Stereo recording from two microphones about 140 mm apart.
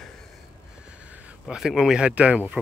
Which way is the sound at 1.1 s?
10° right (ahead or behind).